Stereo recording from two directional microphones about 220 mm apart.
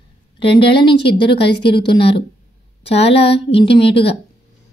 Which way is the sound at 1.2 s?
50° left (ahead or behind).